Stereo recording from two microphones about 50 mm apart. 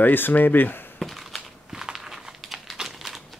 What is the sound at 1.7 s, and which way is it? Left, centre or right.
Crumpling, centre.